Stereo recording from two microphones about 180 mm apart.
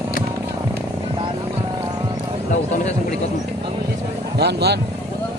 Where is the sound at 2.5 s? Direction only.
40° left (ahead or behind).